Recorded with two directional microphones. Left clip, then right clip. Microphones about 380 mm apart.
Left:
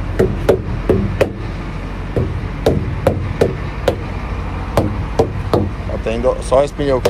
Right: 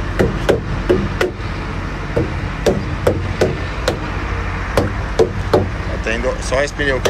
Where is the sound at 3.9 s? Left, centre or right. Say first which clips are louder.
Left 3 dB; left.